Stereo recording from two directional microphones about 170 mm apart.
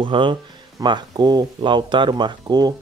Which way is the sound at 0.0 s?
30° right (ahead or behind).